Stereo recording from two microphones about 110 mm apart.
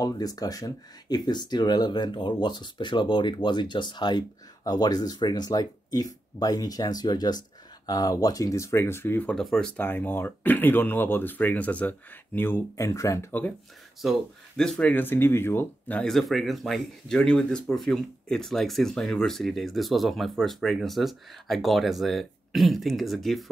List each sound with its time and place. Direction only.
0.0 s speech: 35° left (ahead or behind); by 9.3 s 20° left (ahead or behind)
9.3 s speech: 5° left (ahead or behind)
9.8 s speech: 15° left (ahead or behind)
14.6 s speech: 10° left (ahead or behind)
16.1 s speech: centre (ahead or behind)